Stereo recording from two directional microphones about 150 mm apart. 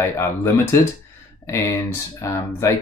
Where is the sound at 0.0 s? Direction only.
15° left (ahead or behind).